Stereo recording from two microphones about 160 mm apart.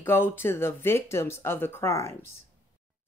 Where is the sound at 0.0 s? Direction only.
15° left (ahead or behind).